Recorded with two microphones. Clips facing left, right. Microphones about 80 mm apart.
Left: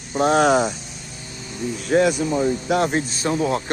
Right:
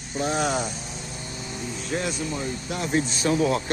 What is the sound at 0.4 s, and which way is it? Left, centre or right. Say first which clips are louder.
Speech: left 10 dB; left.